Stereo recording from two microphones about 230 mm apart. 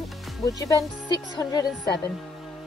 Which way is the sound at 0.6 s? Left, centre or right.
Centre.